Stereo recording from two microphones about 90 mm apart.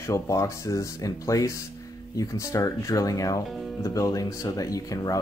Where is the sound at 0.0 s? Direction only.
35° left (ahead or behind).